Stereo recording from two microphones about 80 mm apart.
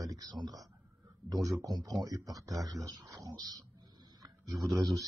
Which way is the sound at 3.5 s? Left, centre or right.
Right.